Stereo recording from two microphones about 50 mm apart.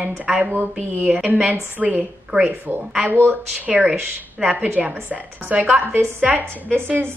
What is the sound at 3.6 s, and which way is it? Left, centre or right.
A woman's voice, right.